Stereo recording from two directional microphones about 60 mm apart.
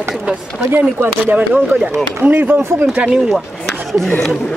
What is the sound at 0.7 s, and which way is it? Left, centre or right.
Speech, right.